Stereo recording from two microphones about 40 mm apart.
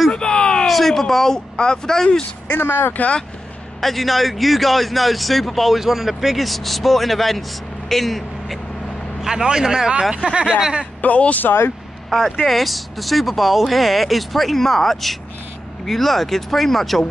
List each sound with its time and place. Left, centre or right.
0.1 s a sound: left
0.7 s speech: centre
2.4 s speech: left
3.8 s speech: centre
9.2 s speech: centre
11.0 s speech: left
11.4 s speech: left
12.2 s speech: centre